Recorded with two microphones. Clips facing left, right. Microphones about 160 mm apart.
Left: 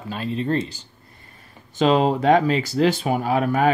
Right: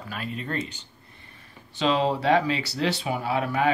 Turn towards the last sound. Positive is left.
turn(degrees=45)  # may be behind; listen again after turning